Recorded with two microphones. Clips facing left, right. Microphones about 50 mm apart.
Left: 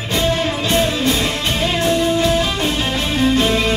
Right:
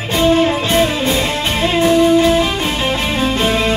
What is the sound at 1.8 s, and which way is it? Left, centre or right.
Music, right.